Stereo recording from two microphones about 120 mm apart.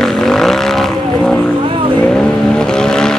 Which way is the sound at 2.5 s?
5° left (ahead or behind).